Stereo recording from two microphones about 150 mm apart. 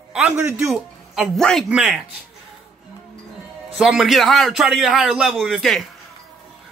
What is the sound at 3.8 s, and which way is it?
Speech, 5° right (ahead or behind).